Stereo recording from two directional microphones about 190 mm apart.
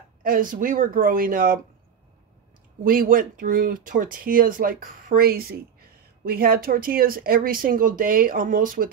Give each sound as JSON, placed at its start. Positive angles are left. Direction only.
{"t": 0.2, "sound": "speech", "side_deg": -45}
{"t": 2.8, "sound": "speech", "side_deg": -50}